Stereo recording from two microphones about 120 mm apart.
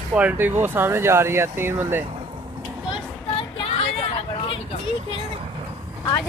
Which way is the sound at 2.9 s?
50° left (ahead or behind).